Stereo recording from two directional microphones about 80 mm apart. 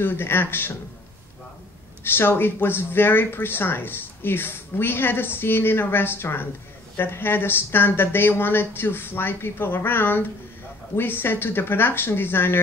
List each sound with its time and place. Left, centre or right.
0.0 s speech: left
2.0 s speech: left